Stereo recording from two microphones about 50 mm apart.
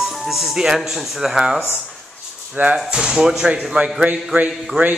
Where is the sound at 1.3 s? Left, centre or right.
Centre.